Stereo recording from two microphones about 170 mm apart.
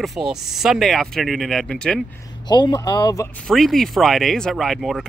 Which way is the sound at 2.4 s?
25° left (ahead or behind).